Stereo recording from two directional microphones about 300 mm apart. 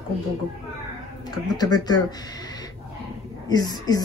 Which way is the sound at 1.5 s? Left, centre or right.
Centre.